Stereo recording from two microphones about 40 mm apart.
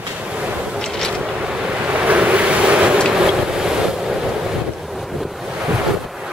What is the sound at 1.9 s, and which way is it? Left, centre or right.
Ocean, right.